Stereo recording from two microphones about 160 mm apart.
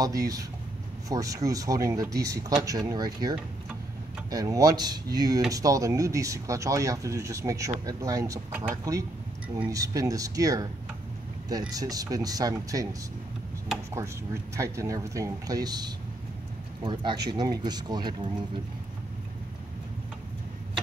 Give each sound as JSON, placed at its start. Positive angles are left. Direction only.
{"t": 0.0, "sound": "speech", "side_deg": -20}
{"t": 9.7, "sound": "speech", "side_deg": -20}
{"t": 11.7, "sound": "speech", "side_deg": -25}
{"t": 14.6, "sound": "speech", "side_deg": -20}